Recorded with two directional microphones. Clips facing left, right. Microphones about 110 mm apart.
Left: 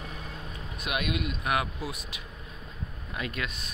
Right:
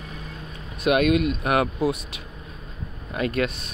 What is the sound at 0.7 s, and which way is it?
Speech, 70° right (ahead or behind).